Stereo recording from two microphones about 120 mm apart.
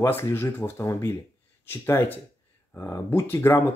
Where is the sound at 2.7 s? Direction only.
20° left (ahead or behind).